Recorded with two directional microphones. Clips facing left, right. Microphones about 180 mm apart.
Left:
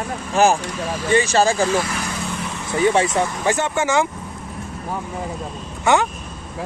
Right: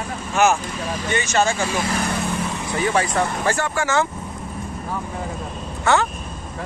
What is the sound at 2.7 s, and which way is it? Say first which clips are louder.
Speech: left 4 dB; 25° left (ahead or behind).